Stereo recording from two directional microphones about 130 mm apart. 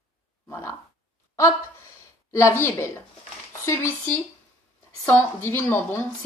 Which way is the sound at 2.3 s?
20° left (ahead or behind).